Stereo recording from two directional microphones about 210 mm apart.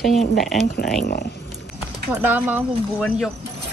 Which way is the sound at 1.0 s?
45° left (ahead or behind).